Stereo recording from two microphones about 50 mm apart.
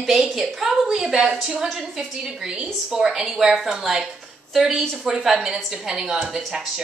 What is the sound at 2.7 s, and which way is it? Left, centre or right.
A woman's voice, centre.